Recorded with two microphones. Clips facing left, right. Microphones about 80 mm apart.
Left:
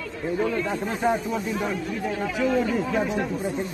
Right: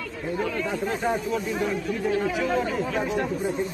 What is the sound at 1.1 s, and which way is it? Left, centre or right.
Speech, centre.